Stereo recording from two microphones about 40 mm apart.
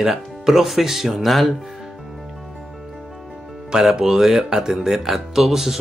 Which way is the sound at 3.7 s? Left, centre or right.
Centre.